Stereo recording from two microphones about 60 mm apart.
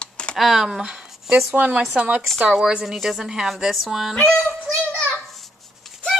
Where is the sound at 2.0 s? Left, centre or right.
Right.